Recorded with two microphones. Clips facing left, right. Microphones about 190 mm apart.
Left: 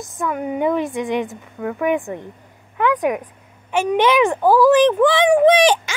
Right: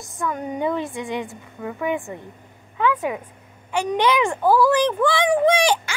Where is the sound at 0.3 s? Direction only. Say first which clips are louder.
Left 5 dB; 10° left (ahead or behind).